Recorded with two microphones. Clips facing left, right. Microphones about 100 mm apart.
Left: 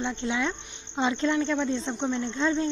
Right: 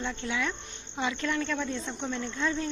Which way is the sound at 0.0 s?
25° left (ahead or behind).